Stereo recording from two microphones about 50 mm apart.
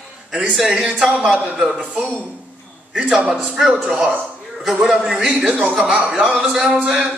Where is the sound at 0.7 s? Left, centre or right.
Centre.